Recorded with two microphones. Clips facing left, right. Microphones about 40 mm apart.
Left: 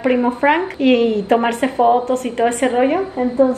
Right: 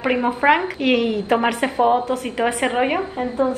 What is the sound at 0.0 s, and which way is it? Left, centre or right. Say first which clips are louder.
A woman's voice: left 3 dB; centre.